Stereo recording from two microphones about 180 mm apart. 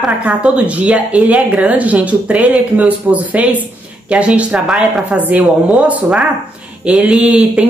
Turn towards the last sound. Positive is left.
turn(degrees=-5)  # may be behind; listen again after turning